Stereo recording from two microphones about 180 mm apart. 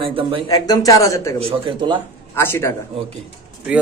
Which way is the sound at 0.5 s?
20° left (ahead or behind).